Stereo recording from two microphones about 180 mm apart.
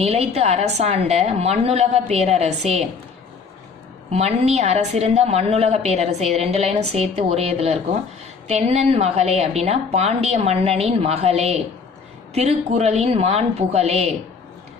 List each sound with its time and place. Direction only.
0.0 s a woman's voice: 35° right (ahead or behind)
4.1 s a woman's voice: 35° right (ahead or behind)